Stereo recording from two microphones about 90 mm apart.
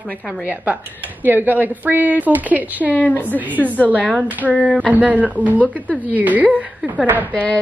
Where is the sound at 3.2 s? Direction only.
20° right (ahead or behind).